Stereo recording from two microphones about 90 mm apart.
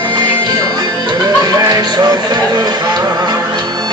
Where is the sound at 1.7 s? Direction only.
50° right (ahead or behind).